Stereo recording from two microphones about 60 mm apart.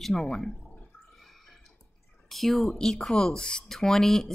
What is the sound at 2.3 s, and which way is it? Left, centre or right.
A woman's voice, centre.